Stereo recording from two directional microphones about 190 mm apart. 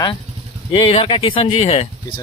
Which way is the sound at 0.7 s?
30° left (ahead or behind).